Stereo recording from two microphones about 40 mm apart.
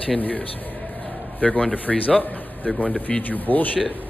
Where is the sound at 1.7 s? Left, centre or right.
Left.